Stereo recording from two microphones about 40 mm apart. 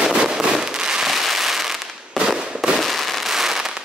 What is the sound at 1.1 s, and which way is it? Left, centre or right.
Fireworks, centre.